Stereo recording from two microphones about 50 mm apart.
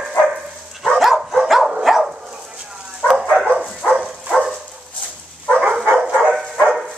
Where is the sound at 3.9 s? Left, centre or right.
Centre.